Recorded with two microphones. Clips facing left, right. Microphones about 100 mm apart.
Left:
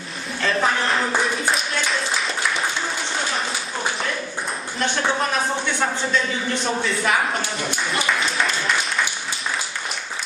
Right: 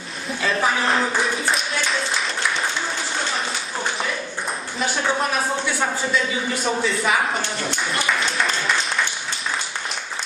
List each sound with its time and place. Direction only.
0.4 s speech: 5° right (ahead or behind)
4.7 s speech: 5° right (ahead or behind)